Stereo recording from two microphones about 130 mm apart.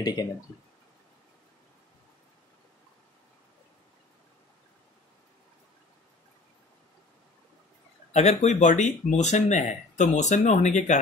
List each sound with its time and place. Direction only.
0.0 s speech: 30° left (ahead or behind)
8.1 s speech: 60° left (ahead or behind)